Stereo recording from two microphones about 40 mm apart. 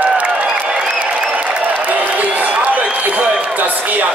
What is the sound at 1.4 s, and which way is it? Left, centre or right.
Applause, right.